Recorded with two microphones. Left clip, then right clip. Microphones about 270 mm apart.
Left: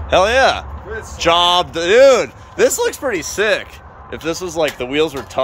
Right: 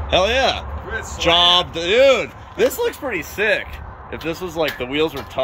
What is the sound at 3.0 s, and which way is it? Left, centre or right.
A man's voice, centre.